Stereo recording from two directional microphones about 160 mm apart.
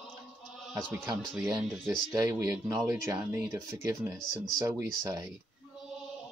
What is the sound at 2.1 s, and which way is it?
Speech, 20° right (ahead or behind).